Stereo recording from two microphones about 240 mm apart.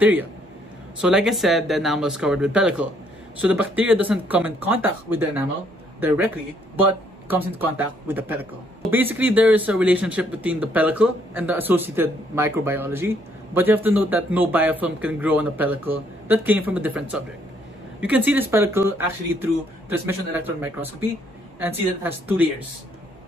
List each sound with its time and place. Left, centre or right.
0.0 s a man's voice: centre